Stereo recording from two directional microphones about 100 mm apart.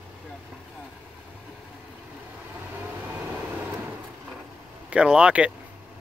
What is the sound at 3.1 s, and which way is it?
Vehicle, 15° right (ahead or behind).